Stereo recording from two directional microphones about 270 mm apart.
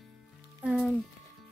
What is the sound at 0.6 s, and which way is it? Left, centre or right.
Speech, centre.